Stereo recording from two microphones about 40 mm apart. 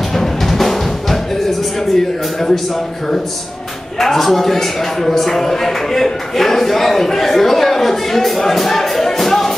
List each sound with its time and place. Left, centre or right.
0.1 s music: centre
2.0 s speech: centre
4.0 s speech: centre